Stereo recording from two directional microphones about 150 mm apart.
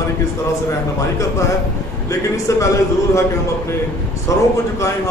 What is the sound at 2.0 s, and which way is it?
A man's voice, 20° left (ahead or behind).